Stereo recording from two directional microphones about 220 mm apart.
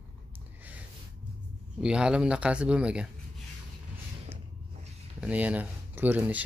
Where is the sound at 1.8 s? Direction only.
5° right (ahead or behind).